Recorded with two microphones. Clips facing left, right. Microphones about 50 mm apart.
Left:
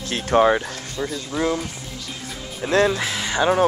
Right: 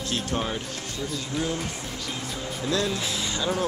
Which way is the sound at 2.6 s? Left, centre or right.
Left.